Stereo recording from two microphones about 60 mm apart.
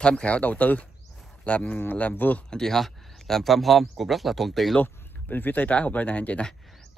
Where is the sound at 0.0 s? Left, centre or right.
Left.